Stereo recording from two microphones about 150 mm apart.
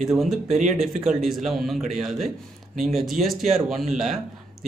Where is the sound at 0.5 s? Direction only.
55° right (ahead or behind).